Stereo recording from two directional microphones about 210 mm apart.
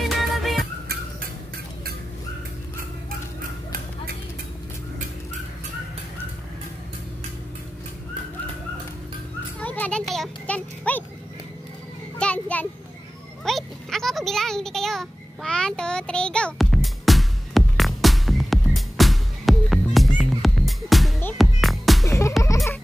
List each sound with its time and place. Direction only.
0.0 s music: centre (ahead or behind)
9.6 s children playing: 5° left (ahead or behind)
12.2 s a sound: 5° left (ahead or behind)
21.2 s music: 5° left (ahead or behind)
22.0 s music: 15° left (ahead or behind)